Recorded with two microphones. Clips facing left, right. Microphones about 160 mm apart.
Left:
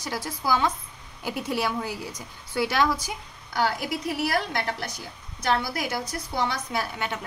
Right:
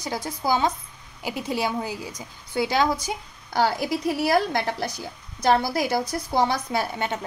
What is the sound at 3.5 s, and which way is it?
Speech, 30° right (ahead or behind).